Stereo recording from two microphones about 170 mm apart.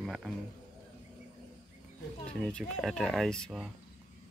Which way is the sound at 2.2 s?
5° left (ahead or behind).